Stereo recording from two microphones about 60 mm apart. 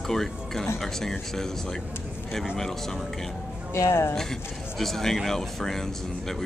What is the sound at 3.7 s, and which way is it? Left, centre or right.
Speech, left.